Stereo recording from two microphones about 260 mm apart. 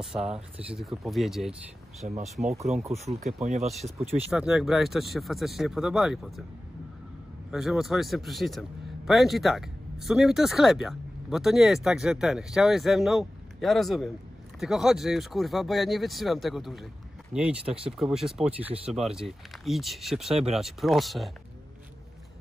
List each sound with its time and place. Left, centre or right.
0.0 s a man's voice: centre
2.9 s speech: right
4.3 s a man's voice: centre
7.5 s a man's voice: centre